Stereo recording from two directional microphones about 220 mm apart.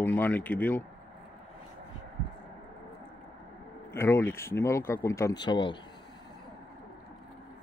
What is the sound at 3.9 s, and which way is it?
Speech, 10° left (ahead or behind).